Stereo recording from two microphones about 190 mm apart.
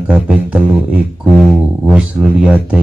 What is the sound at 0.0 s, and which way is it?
Speech, 5° right (ahead or behind).